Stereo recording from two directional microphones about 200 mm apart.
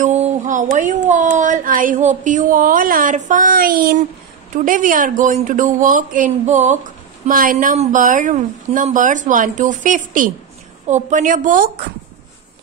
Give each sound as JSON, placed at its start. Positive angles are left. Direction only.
{"t": 0.0, "sound": "speech", "side_deg": -35}